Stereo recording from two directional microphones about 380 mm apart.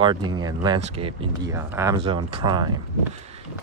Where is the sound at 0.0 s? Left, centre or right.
Centre.